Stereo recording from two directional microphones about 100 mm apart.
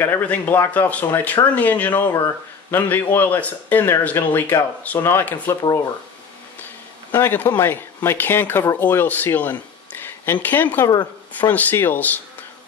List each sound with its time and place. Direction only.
0.0 s speech: 20° left (ahead or behind)
7.1 s speech: 20° left (ahead or behind)